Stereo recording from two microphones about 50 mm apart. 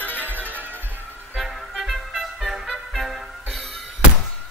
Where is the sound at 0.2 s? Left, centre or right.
Right.